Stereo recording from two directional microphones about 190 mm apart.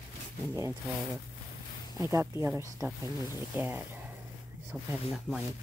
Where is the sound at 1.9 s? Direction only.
15° right (ahead or behind).